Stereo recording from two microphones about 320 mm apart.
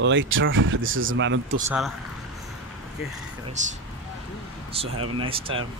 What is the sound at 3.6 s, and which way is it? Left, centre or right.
Speech, right.